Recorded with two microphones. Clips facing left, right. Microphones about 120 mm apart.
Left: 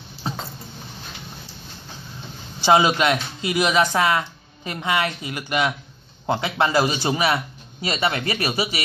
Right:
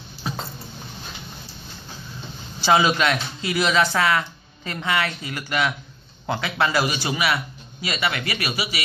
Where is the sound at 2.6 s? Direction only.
20° left (ahead or behind).